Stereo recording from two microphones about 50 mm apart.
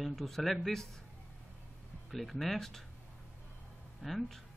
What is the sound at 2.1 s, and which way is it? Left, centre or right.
Speech, centre.